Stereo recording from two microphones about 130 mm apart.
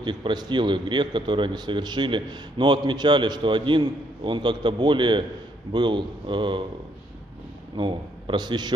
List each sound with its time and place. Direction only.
0.0 s a man's voice: 35° right (ahead or behind)
7.7 s a man's voice: 40° right (ahead or behind)